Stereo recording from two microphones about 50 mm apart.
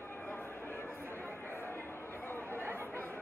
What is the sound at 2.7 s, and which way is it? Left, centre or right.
Chatter, left.